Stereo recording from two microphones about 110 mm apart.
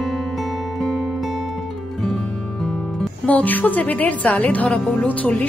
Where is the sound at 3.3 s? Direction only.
15° left (ahead or behind).